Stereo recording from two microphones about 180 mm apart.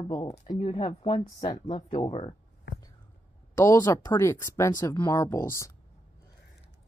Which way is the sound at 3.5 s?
15° left (ahead or behind).